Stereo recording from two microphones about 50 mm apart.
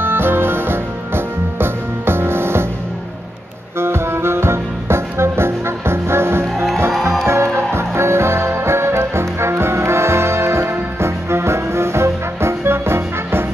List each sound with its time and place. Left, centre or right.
0.0 s music: right
3.8 s music: right
6.4 s music: centre
7.2 s music: right